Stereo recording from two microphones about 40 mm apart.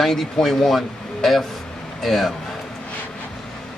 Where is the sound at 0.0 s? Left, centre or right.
Centre.